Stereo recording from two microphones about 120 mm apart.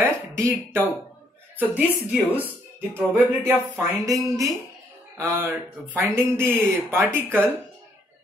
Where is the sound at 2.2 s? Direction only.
15° left (ahead or behind).